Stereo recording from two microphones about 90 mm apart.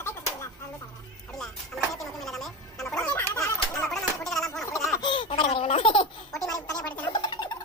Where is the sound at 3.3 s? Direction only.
35° left (ahead or behind).